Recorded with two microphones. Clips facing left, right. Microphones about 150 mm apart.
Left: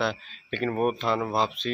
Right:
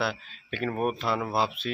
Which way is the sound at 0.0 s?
5° right (ahead or behind).